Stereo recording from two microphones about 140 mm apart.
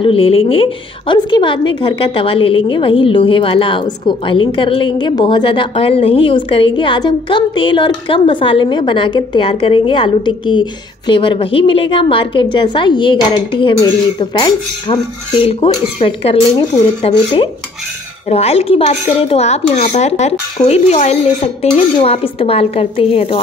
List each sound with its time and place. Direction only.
0.0 s a woman's voice: 40° left (ahead or behind)